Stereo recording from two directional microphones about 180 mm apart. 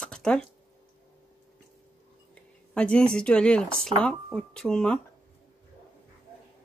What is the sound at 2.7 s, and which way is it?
Speech, 5° left (ahead or behind).